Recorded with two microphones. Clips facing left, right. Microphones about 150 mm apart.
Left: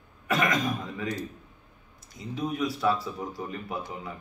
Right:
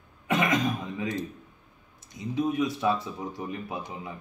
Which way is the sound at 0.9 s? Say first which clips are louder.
Right 1 dB; 20° right (ahead or behind).